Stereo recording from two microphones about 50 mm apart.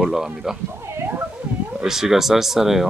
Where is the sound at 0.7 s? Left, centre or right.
Right.